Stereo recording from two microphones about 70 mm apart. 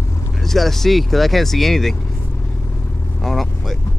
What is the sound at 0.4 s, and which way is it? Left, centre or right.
Speech, centre.